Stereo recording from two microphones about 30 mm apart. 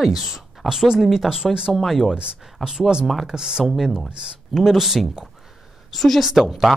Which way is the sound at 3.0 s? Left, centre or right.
Centre.